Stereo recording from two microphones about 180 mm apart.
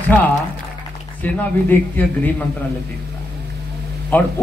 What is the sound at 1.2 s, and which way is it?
Speech, 10° left (ahead or behind).